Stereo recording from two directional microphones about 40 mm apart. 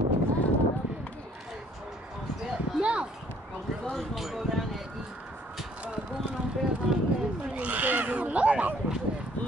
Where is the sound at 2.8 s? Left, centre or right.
Right.